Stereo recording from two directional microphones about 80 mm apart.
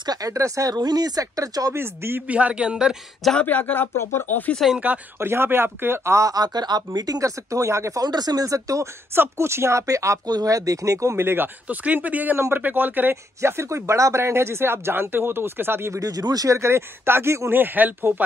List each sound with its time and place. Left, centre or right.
0.0 s speech: right
1.7 s speech: right
2.2 s a man's voice: centre
3.3 s speech: centre
3.9 s speech: left
5.2 s speech: right
7.0 s speech: right
8.0 s speech: right
9.1 s speech: right
10.2 s speech: right
13.4 s speech: right
16.0 s speech: right